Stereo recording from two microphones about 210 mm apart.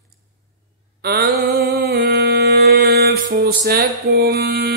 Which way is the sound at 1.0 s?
45° right (ahead or behind).